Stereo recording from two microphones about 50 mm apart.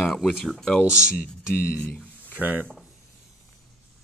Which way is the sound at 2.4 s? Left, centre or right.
Right.